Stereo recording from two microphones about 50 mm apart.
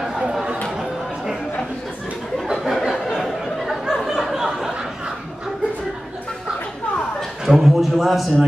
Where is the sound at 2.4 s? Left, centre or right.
Centre.